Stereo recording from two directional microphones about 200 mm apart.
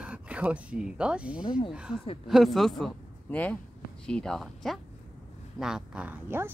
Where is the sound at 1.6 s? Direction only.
5° right (ahead or behind).